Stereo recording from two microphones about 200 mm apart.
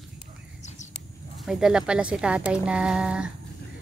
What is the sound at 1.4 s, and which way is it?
Speech, 5° right (ahead or behind).